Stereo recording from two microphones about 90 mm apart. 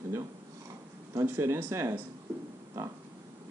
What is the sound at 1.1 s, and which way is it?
Speech, 25° right (ahead or behind).